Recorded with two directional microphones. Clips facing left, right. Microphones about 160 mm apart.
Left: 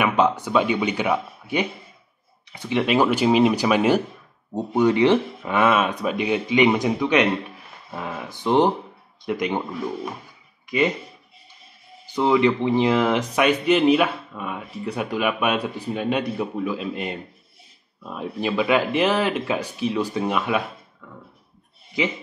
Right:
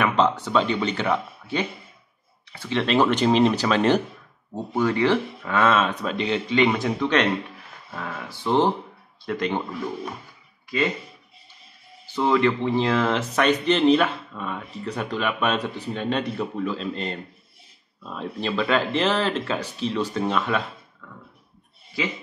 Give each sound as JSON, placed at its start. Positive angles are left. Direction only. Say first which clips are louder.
{"t": 0.0, "sound": "speech", "louder": "left 1 dB", "side_deg": 10}
{"t": 12.1, "sound": "a man's voice", "louder": "left 2 dB", "side_deg": 15}